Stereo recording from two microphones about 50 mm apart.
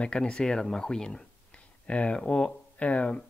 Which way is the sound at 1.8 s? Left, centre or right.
Left.